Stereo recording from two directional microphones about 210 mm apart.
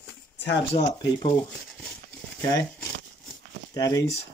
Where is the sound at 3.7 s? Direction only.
15° left (ahead or behind).